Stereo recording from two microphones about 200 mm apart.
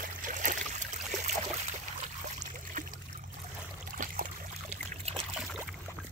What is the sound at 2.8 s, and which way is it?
Trickle, 40° right (ahead or behind).